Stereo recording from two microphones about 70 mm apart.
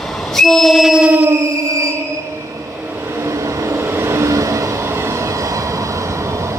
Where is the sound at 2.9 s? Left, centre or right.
Right.